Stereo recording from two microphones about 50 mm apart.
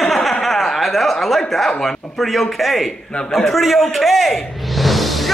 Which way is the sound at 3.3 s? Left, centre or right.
Centre.